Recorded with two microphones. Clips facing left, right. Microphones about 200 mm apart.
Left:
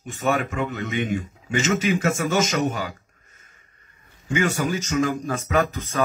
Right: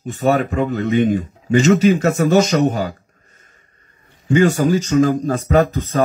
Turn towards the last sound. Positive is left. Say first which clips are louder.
# right 7 dB
turn(degrees=-35)  # may be behind; listen again after turning